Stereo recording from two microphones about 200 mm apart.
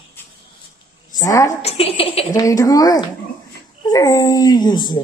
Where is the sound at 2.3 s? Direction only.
15° left (ahead or behind).